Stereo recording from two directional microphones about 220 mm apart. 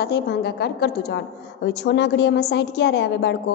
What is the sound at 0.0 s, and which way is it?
A woman's voice, 45° left (ahead or behind).